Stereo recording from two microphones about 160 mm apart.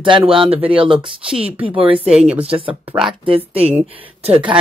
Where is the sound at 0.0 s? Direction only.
30° right (ahead or behind).